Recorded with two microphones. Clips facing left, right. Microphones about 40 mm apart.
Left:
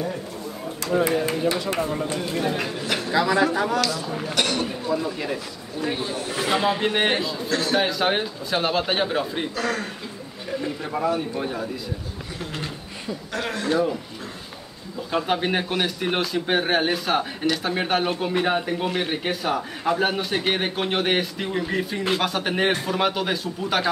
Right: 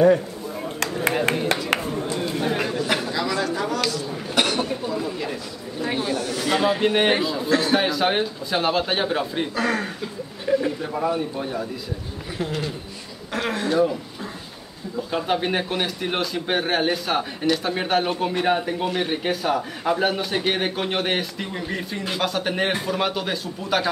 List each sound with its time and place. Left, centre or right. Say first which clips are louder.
1.0 s speech: right 1 dB; right
2.4 s a man's voice: right 2 dB; centre
3.1 s a man's voice: left 4 dB; left
4.4 s speech: right 3 dB; centre
5.0 s a man's voice: left 1 dB; centre
9.6 s speech: right 3 dB; centre
10.8 s a man's voice: even; centre
13.3 s a sound: right 4 dB; centre
13.7 s a man's voice: right 2 dB; centre
15.0 s a man's voice: left 1 dB; centre